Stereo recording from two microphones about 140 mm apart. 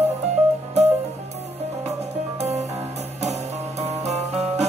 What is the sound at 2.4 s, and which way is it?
Music, 50° right (ahead or behind).